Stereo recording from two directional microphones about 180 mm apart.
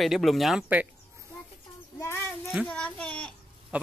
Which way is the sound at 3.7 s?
5° right (ahead or behind).